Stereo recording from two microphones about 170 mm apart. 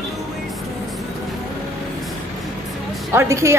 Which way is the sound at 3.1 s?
15° right (ahead or behind).